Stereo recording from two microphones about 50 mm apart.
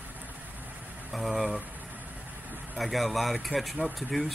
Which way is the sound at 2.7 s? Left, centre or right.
Centre.